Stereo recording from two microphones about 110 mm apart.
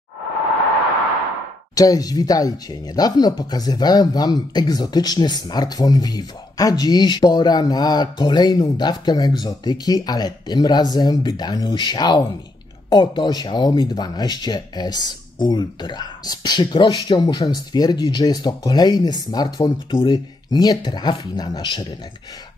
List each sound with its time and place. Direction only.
1.8 s speech: 35° left (ahead or behind)